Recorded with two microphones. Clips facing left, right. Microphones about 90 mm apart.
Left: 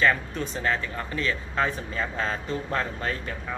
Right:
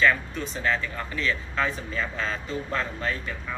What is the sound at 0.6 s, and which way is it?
Speech, 35° left (ahead or behind).